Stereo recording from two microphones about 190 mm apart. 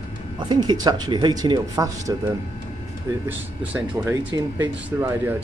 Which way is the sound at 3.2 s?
10° right (ahead or behind).